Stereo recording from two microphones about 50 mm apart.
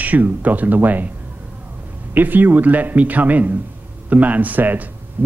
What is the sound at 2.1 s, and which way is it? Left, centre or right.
Speech, right.